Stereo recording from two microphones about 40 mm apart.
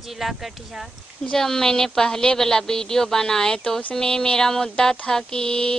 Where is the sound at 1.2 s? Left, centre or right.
Centre.